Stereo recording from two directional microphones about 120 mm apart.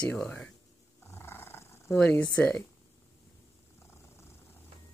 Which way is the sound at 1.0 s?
20° left (ahead or behind).